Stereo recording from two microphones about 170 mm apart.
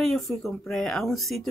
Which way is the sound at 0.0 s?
Centre (ahead or behind).